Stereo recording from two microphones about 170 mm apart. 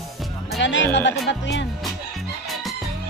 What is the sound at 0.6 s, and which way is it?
Speech, 90° left.